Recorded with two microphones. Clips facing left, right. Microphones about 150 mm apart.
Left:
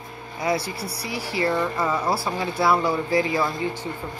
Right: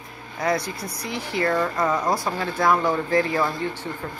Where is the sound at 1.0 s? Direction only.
5° left (ahead or behind).